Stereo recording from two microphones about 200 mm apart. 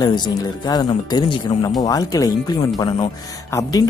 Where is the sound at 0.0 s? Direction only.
20° left (ahead or behind).